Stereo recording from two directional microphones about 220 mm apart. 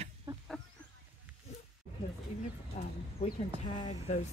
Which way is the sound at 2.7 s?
35° left (ahead or behind).